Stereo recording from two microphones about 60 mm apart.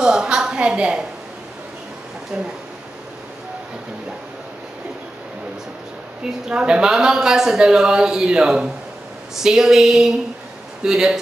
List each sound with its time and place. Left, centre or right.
0.0 s a woman's voice: centre
2.3 s speech: centre
6.4 s speech: centre